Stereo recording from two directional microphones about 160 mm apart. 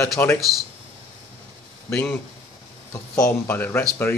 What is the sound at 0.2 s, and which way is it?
Speech, 10° left (ahead or behind).